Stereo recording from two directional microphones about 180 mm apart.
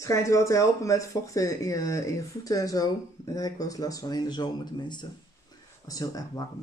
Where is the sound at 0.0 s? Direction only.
20° left (ahead or behind).